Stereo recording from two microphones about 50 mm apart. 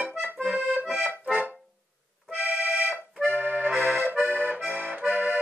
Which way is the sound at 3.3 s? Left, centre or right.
Right.